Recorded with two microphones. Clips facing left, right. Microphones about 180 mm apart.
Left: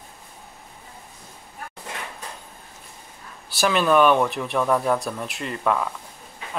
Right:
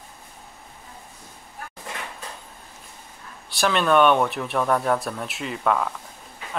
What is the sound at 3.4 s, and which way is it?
Speech, 5° left (ahead or behind).